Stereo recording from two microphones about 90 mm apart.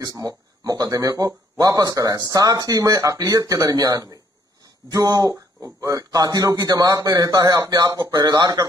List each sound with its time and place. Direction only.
0.0 s speech: 40° right (ahead or behind)